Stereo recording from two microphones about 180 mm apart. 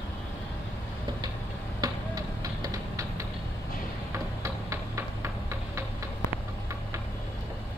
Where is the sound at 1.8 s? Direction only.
20° right (ahead or behind).